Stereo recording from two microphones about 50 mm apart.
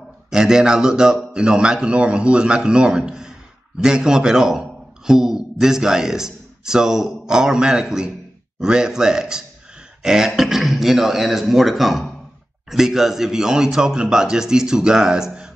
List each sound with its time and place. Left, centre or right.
0.3 s a man's voice: centre